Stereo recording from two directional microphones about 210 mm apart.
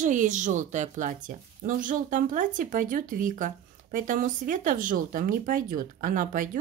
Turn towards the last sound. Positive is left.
turn(degrees=-40)  # may be behind; listen again after turning